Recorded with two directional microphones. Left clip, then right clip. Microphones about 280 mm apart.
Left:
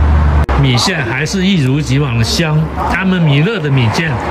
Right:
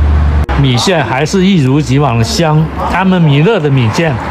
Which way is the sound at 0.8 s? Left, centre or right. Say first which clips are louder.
Right 4 dB; centre.